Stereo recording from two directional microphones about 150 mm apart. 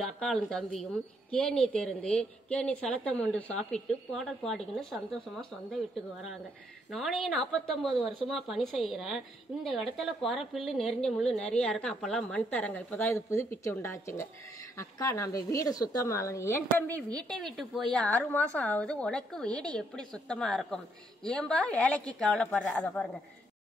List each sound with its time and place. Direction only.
0.0 s a woman's voice: 5° left (ahead or behind)
6.9 s a woman's voice: centre (ahead or behind)